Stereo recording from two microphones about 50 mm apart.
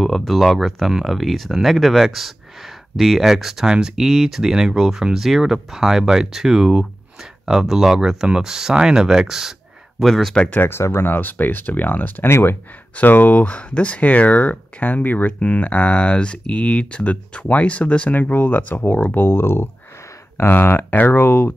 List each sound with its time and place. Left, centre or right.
0.0 s speech: centre
10.0 s speech: centre
10.7 s speech: left
11.1 s speech: left
12.3 s speech: left
12.9 s speech: left
19.1 s speech: left